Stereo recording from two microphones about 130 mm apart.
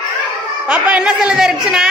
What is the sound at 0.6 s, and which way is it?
A woman's voice, 10° right (ahead or behind).